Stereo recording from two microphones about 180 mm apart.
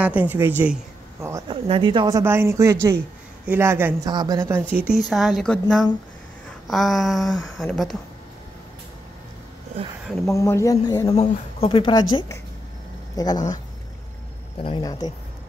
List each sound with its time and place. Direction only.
0.0 s speech: 10° right (ahead or behind)
1.5 s a woman's voice: 25° right (ahead or behind)
4.7 s speech: 5° right (ahead or behind)
10.2 s speech: 15° left (ahead or behind)
11.1 s speech: 30° left (ahead or behind)
13.1 s speech: 20° left (ahead or behind)
14.6 s speech: 25° left (ahead or behind)